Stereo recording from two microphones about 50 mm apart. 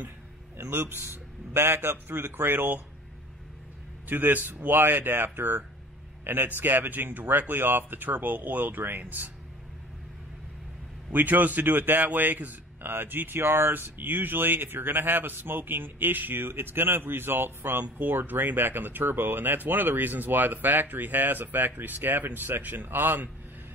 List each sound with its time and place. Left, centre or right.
0.6 s a man's voice: right
4.1 s a man's voice: right
11.1 s a man's voice: right